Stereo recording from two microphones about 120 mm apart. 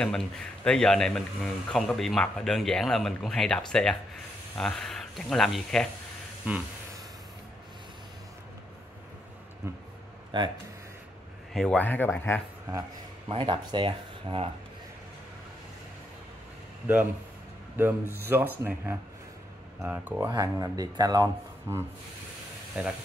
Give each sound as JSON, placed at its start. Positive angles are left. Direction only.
{"t": 0.0, "sound": "a man's voice", "side_deg": 5}
{"t": 6.5, "sound": "speech", "side_deg": -15}
{"t": 10.3, "sound": "speech", "side_deg": -40}
{"t": 11.5, "sound": "speech", "side_deg": 5}
{"t": 11.8, "sound": "speech", "side_deg": 15}
{"t": 13.3, "sound": "speech", "side_deg": -45}
{"t": 18.1, "sound": "speech", "side_deg": -15}
{"t": 20.2, "sound": "speech", "side_deg": -30}
{"t": 22.8, "sound": "speech", "side_deg": -10}